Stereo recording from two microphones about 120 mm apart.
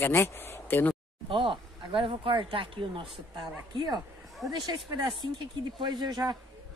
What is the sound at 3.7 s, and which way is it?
Speech, 35° right (ahead or behind).